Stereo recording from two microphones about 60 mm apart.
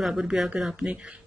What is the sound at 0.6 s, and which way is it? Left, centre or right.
Mantra, centre.